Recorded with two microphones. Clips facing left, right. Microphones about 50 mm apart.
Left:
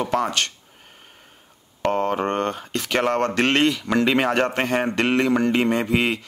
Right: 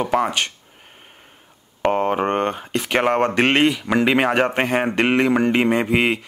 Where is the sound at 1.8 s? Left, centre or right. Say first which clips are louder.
Right 3 dB; centre.